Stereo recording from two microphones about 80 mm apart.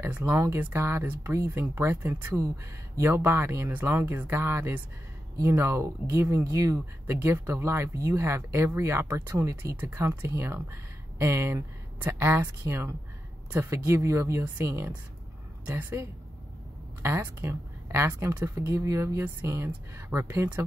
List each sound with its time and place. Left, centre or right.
0.0 s speech: right
9.8 s speech: right